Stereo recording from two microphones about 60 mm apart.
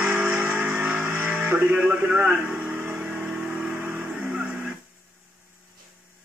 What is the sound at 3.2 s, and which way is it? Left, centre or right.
Vehicle, right.